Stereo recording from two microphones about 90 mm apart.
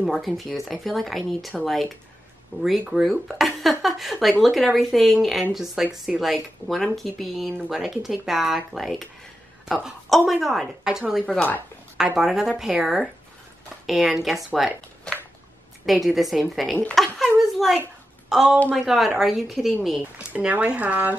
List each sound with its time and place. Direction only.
0.0 s speech: centre (ahead or behind)
2.9 s speech: 5° right (ahead or behind)
16.9 s a sound: 5° left (ahead or behind)
18.3 s a woman's voice: 5° right (ahead or behind)
20.0 s speech: 15° right (ahead or behind)